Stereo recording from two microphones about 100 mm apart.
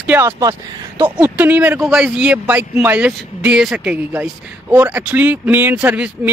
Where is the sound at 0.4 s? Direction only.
35° right (ahead or behind).